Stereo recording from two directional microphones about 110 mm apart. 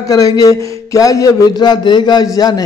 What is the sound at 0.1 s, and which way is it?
Speech, 30° left (ahead or behind).